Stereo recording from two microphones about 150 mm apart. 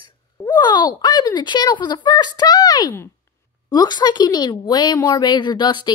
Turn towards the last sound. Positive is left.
turn(degrees=30)  # may be behind; listen again after turning